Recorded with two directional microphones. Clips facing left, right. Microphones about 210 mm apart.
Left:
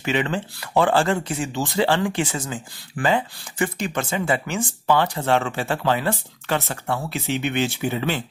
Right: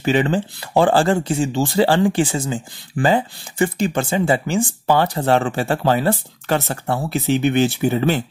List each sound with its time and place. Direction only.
0.0 s speech: 35° right (ahead or behind)